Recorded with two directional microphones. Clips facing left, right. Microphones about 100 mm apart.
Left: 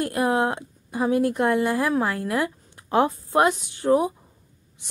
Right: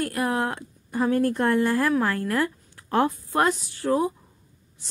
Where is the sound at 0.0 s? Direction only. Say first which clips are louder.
Left 3 dB; 20° left (ahead or behind).